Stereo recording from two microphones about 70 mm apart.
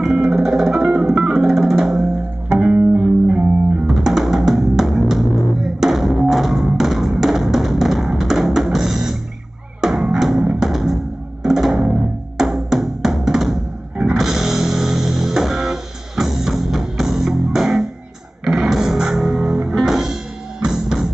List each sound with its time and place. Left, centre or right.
0.0 s music: centre
2.7 s music: right
3.3 s music: centre